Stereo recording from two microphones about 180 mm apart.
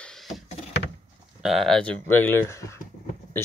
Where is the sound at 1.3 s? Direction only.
Centre (ahead or behind).